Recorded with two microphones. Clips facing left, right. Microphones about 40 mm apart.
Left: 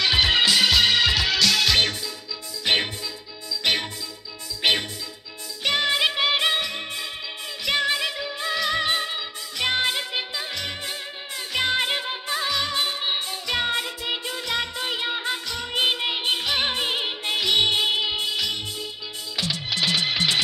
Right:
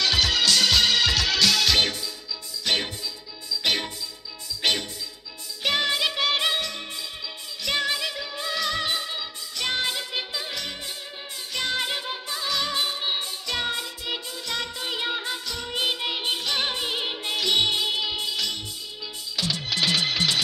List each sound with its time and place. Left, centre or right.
0.0 s music: left
0.5 s music: centre
2.6 s music: left
3.6 s music: centre
5.6 s music: centre
5.9 s music: centre
10.1 s music: centre
11.5 s music: left
12.4 s music: centre